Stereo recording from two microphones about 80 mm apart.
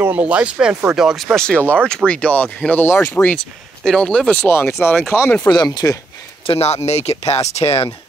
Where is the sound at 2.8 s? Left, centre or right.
Left.